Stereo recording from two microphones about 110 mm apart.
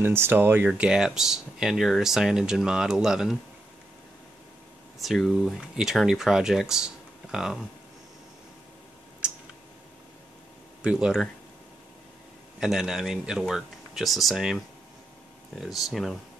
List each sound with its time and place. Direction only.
0.0 s speech: 20° right (ahead or behind)
0.7 s speech: 5° right (ahead or behind)
4.9 s speech: centre (ahead or behind)
9.2 s clicking: 10° right (ahead or behind)
10.8 s speech: 10° right (ahead or behind)
12.5 s speech: 5° right (ahead or behind)
15.6 s speech: centre (ahead or behind)